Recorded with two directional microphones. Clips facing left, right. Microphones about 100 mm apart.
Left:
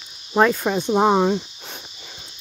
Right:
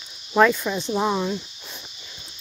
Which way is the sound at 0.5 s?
50° left (ahead or behind).